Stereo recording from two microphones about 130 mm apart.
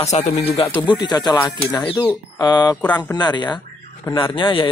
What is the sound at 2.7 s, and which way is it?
Speech, 10° left (ahead or behind).